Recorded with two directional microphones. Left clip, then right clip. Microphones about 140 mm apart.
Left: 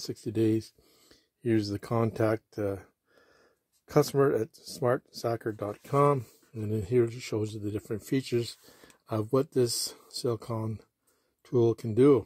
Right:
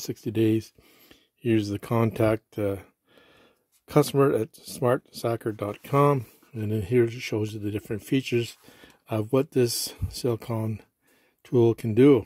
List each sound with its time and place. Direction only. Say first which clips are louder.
0.1 s speech: right 4 dB; 25° right (ahead or behind)